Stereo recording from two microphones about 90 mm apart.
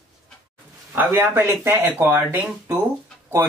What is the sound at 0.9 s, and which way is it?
Speech, 25° right (ahead or behind).